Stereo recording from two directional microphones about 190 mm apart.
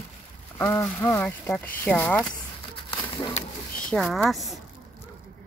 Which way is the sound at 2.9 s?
25° left (ahead or behind).